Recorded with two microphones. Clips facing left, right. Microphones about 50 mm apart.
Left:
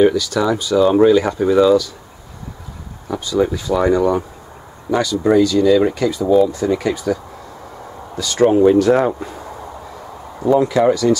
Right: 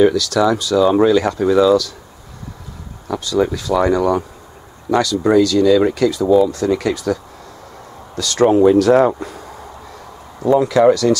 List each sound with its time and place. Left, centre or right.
0.0 s speech: centre
3.1 s speech: centre
10.5 s speech: centre